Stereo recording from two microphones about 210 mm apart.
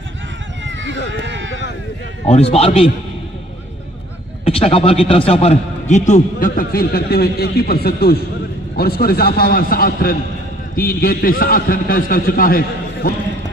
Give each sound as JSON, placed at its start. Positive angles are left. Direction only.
{"t": 0.7, "sound": "a sound", "side_deg": -60}
{"t": 2.2, "sound": "a man's voice", "side_deg": 30}
{"t": 4.5, "sound": "a man's voice", "side_deg": 25}